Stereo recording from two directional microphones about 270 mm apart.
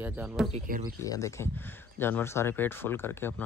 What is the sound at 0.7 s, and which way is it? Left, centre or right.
Speech, right.